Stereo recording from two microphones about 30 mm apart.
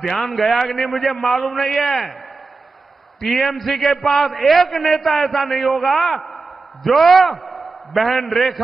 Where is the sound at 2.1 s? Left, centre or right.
Centre.